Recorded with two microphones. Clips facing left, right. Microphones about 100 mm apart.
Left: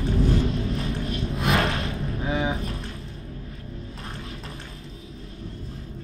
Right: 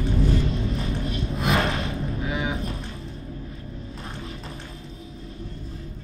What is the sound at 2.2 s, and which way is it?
Music, 35° left (ahead or behind).